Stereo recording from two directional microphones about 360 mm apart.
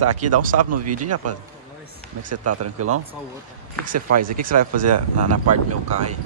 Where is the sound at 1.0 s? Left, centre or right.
Right.